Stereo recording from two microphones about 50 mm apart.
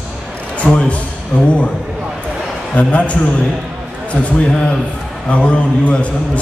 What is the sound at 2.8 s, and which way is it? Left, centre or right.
A man's voice, left.